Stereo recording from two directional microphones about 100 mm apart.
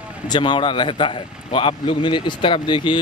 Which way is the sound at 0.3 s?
50° left (ahead or behind).